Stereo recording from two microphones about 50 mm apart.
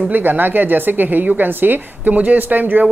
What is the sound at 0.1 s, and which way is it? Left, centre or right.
Speech, right.